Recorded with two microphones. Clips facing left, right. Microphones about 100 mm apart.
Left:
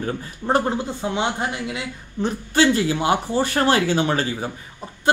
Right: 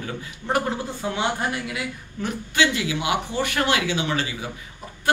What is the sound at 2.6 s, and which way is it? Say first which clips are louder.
Speech: left 5 dB; 40° left (ahead or behind).